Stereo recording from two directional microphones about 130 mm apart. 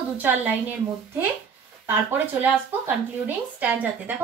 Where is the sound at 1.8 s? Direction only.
15° right (ahead or behind).